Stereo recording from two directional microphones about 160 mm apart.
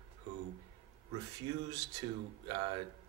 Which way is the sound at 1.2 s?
25° right (ahead or behind).